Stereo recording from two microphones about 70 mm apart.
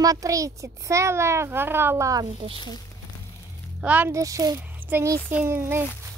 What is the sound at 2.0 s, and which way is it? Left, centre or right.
Speech, right.